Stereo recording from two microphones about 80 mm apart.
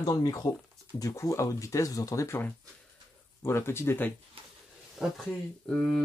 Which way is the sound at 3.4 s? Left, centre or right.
Left.